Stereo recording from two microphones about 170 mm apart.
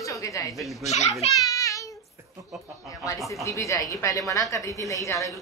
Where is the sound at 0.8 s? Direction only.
40° left (ahead or behind).